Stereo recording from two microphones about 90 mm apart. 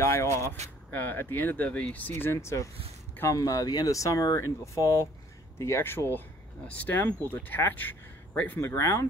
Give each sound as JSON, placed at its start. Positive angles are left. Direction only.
{"t": 0.0, "sound": "speech", "side_deg": 30}
{"t": 0.8, "sound": "speech", "side_deg": 20}
{"t": 6.1, "sound": "speech", "side_deg": 15}